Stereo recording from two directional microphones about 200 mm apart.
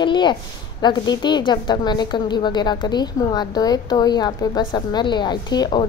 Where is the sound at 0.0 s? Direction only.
25° left (ahead or behind).